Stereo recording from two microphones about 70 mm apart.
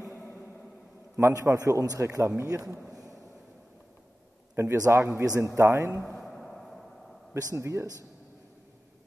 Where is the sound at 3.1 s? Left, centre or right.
Centre.